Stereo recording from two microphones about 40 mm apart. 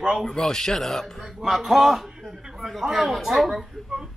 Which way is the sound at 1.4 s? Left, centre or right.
Centre.